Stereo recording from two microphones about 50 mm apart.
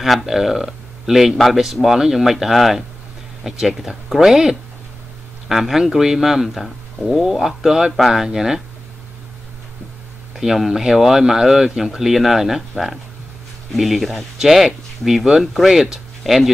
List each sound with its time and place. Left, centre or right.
0.0 s speech: centre
10.3 s speech: centre